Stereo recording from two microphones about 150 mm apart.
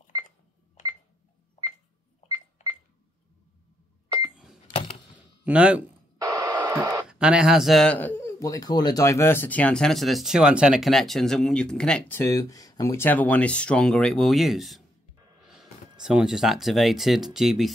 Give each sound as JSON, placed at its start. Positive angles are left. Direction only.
{"t": 2.2, "sound": "cash register", "side_deg": -25}
{"t": 5.1, "sound": "a sound", "side_deg": -10}
{"t": 6.1, "sound": "radio", "side_deg": -25}
{"t": 7.1, "sound": "a man's voice", "side_deg": -5}
{"t": 12.2, "sound": "speech", "side_deg": 20}